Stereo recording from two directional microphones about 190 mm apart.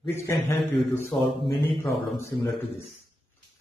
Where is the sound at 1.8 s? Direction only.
15° left (ahead or behind).